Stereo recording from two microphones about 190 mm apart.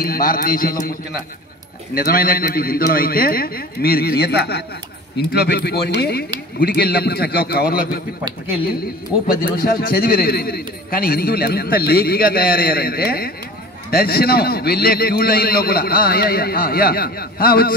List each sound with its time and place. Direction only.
0.0 s a man's voice: 50° left (ahead or behind)
2.0 s a man's voice: 50° left (ahead or behind)
9.3 s a man's voice: 50° left (ahead or behind)